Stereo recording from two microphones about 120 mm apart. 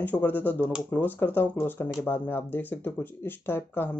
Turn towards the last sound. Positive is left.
turn(degrees=20)  # may be behind; listen again after turning